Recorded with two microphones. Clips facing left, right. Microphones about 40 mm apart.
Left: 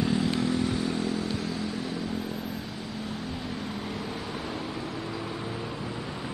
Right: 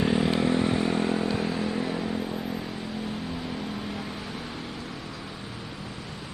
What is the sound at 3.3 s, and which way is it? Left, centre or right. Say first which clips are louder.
Vehicle: right 1 dB; centre.